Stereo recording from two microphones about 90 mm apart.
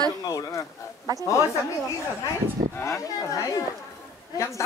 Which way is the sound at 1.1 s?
40° right (ahead or behind).